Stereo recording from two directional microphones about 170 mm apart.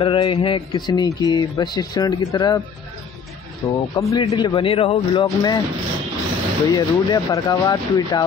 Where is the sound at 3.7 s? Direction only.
25° left (ahead or behind).